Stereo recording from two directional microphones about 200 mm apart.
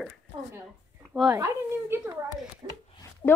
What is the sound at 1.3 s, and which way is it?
Speech, 15° right (ahead or behind).